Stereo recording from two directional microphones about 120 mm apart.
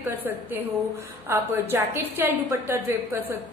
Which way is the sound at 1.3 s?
20° right (ahead or behind).